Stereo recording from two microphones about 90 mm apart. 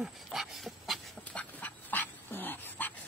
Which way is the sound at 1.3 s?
15° left (ahead or behind).